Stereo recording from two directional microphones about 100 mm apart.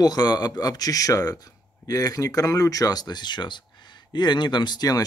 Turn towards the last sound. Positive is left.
turn(degrees=40)  # may be behind; listen again after turning